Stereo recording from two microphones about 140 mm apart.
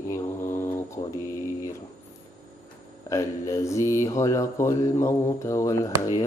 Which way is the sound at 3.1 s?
20° left (ahead or behind).